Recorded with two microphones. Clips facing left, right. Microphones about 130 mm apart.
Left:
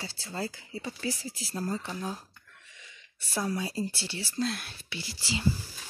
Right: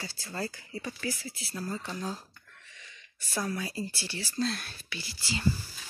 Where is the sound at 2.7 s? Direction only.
15° left (ahead or behind).